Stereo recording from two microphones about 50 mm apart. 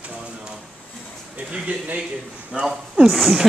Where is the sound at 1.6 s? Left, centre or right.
Right.